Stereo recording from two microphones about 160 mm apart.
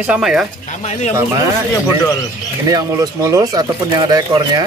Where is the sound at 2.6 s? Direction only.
20° right (ahead or behind).